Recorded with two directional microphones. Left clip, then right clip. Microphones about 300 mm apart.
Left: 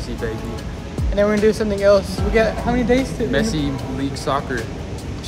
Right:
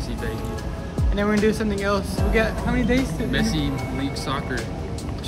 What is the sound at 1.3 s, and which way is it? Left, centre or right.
Speech, centre.